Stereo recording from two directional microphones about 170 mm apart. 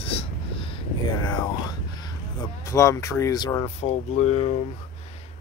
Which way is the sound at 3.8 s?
45° left (ahead or behind).